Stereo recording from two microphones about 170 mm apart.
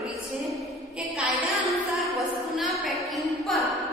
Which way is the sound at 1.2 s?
Centre (ahead or behind).